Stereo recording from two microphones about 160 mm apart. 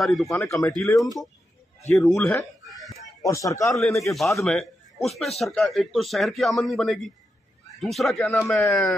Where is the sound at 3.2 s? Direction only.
20° left (ahead or behind).